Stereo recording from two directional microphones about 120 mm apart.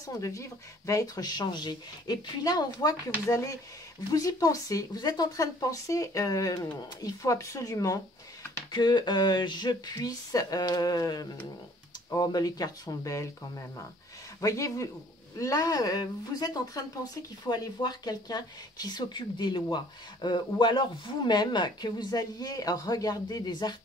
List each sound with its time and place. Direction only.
0.0 s a woman's voice: 25° left (ahead or behind)
14.4 s a woman's voice: 25° left (ahead or behind)